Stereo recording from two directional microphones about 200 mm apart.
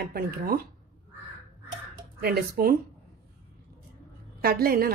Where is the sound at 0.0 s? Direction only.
50° right (ahead or behind).